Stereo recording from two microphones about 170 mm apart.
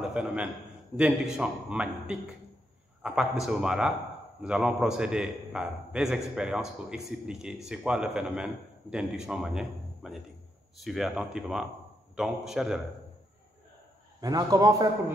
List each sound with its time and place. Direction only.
0.0 s a man's voice: 5° right (ahead or behind)
14.2 s a man's voice: 20° right (ahead or behind)